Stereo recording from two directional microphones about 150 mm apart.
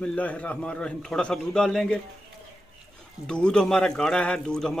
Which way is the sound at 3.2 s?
5° left (ahead or behind).